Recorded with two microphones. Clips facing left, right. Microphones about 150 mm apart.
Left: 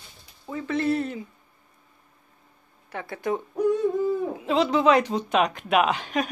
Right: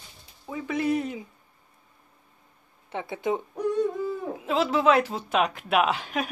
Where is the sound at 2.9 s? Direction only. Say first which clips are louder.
Even; 20° right (ahead or behind).